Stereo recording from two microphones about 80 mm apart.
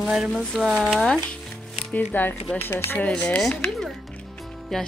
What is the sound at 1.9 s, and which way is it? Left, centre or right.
Speech, left.